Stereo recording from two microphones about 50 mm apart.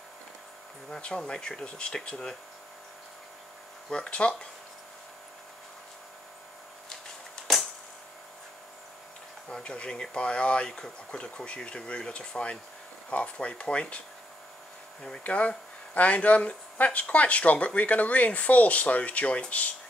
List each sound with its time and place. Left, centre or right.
1.0 s speech: centre
3.9 s speech: left
9.5 s speech: centre
15.2 s speech: left